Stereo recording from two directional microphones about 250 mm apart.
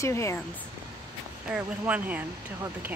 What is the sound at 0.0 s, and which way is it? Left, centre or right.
Speech, centre.